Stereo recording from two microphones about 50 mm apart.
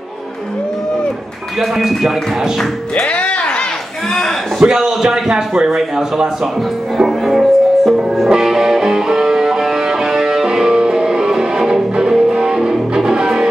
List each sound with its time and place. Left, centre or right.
1.6 s speech: centre
3.0 s music: left
4.6 s speech: centre
7.0 s music: centre